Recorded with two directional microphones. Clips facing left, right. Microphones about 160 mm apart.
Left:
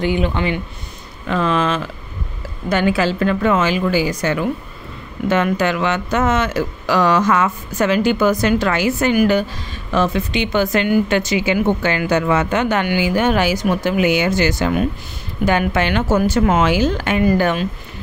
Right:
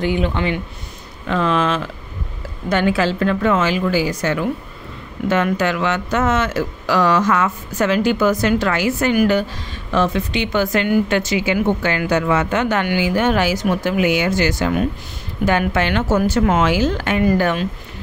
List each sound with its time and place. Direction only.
0.0 s a woman's voice: 15° left (ahead or behind)